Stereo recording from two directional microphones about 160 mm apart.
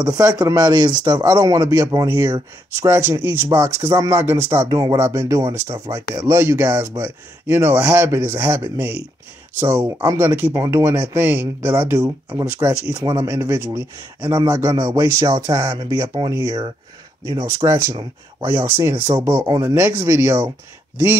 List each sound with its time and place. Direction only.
0.1 s speech: 25° right (ahead or behind)
2.0 s speech: 15° right (ahead or behind)